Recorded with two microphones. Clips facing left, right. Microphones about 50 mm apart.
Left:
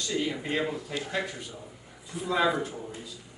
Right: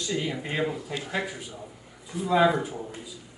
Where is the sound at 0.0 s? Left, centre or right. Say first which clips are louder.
Even; centre.